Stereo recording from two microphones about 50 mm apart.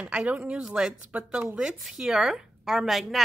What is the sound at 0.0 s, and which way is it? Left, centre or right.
Speech, centre.